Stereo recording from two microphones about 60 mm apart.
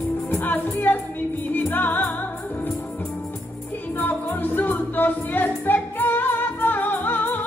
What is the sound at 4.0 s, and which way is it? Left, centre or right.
Music, left.